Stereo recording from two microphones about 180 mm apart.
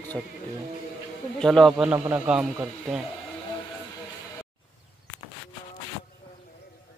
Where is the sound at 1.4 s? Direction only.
Centre (ahead or behind).